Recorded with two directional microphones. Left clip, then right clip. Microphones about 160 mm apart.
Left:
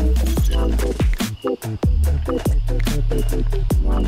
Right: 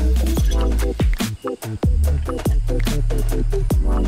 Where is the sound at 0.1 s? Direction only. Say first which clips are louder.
Even; centre (ahead or behind).